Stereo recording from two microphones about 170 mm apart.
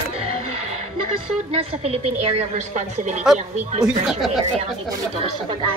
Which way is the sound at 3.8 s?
Centre (ahead or behind).